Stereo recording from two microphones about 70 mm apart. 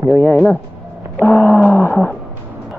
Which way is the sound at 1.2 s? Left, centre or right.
Left.